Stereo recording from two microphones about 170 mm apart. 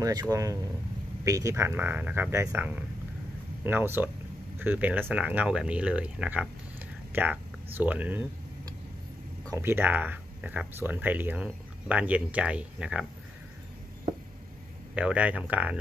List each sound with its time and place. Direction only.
0.0 s speech: 20° right (ahead or behind)
9.5 s speech: 15° right (ahead or behind)
15.0 s speech: 5° right (ahead or behind)